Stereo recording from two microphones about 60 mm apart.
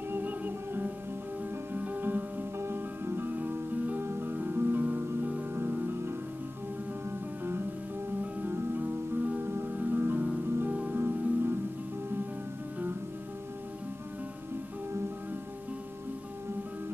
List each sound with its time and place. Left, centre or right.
0.1 s music: right
4.0 s music: right
8.2 s music: right